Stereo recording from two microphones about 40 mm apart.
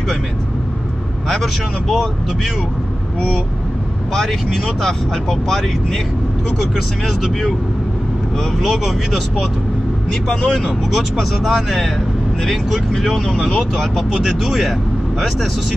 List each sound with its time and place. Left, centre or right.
1.3 s speech: centre
4.1 s speech: centre
8.5 s speech: centre
10.6 s speech: centre
13.0 s speech: centre